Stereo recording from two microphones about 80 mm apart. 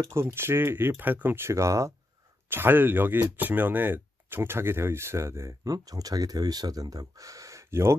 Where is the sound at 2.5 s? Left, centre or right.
Right.